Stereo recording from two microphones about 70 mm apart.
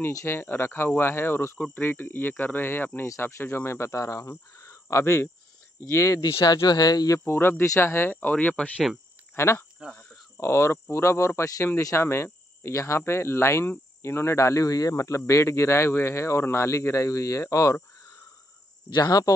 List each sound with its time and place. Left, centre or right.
0.1 s speech: left
3.1 s speech: left
6.4 s speech: left
7.2 s speech: left
7.6 s speech: left; by 8.8 s centre
9.3 s speech: left
18.9 s speech: left